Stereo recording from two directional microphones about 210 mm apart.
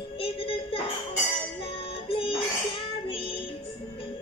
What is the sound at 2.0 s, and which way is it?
Music, 25° left (ahead or behind).